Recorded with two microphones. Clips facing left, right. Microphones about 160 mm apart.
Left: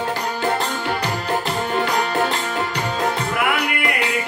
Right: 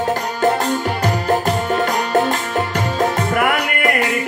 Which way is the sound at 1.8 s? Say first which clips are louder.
Right 3 dB; 45° right (ahead or behind).